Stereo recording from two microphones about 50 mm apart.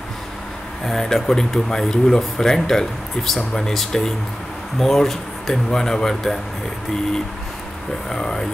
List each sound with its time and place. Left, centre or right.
0.8 s speech: centre
8.1 s speech: centre